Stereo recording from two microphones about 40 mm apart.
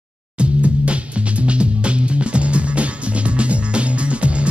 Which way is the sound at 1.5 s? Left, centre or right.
Right.